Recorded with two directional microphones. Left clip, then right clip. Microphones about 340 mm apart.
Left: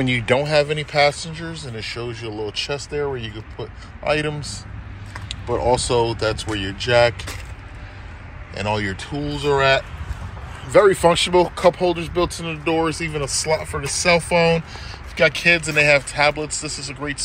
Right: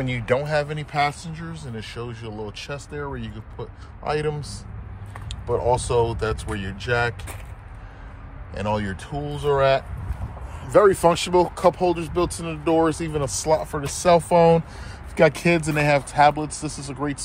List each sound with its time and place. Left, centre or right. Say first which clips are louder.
0.0 s speech: left 4 dB; centre
8.5 s speech: left 3 dB; centre